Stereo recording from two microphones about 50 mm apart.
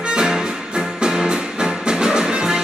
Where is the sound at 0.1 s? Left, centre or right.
Centre.